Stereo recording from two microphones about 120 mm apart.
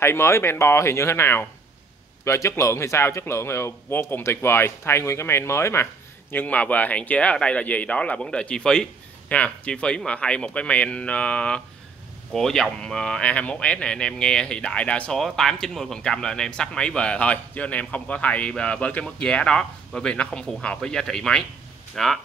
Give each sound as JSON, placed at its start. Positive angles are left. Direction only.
{"t": 0.0, "sound": "speech", "side_deg": 20}